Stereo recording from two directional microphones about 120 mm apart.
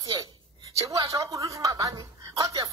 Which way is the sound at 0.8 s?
25° right (ahead or behind).